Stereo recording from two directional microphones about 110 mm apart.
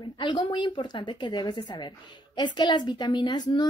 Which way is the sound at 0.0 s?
45° left (ahead or behind).